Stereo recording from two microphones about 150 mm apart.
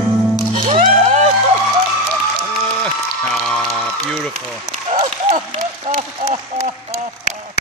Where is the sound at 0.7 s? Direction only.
55° right (ahead or behind).